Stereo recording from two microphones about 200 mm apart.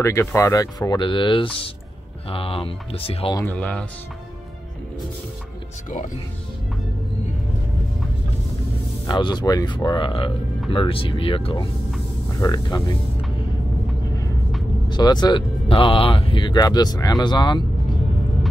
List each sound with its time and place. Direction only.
0.0 s speech: 15° left (ahead or behind)
3.3 s speech: 10° left (ahead or behind)
5.9 s speech: 40° left (ahead or behind)
9.0 s speech: 20° left (ahead or behind)
14.9 s speech: 20° left (ahead or behind)